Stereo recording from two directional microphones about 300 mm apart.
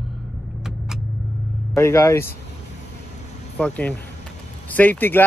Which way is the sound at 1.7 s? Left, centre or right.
Centre.